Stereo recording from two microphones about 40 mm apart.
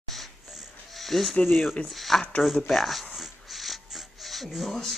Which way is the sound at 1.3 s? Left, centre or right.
Centre.